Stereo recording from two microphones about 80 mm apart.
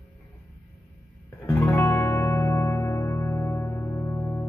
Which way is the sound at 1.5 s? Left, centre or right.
Left.